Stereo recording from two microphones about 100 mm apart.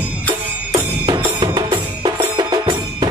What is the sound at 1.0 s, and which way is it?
Music, 55° right (ahead or behind).